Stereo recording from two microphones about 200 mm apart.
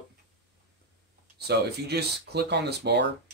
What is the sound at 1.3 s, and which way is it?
Speech, 55° right (ahead or behind).